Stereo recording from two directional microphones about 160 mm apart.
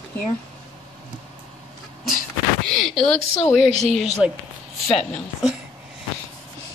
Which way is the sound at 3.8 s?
Centre (ahead or behind).